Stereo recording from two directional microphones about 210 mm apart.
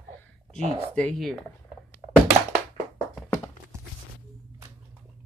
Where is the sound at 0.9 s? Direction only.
5° left (ahead or behind).